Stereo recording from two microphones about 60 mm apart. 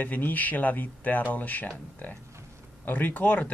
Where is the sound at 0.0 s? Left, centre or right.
Left.